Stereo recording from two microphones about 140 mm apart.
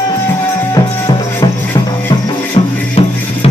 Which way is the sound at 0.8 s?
30° left (ahead or behind).